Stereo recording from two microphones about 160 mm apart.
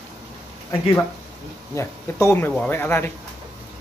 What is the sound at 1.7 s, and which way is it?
Speech, 15° left (ahead or behind).